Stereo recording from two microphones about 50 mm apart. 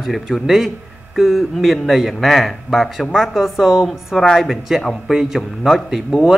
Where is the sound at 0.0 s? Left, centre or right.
Centre.